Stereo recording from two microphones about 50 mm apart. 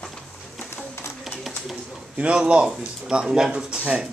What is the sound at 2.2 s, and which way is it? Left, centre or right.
Speech, centre.